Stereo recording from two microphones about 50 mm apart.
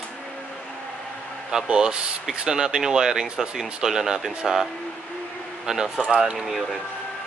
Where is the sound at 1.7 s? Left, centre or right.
Centre.